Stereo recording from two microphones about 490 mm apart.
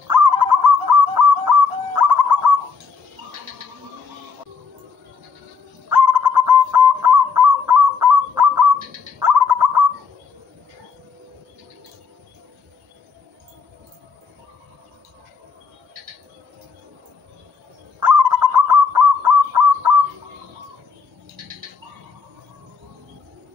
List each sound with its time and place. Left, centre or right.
0.1 s bird: right
5.9 s bird: right
18.0 s bird: right